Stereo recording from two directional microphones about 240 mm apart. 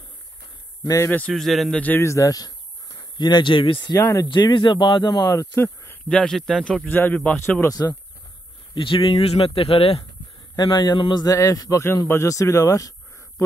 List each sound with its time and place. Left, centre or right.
0.8 s speech: centre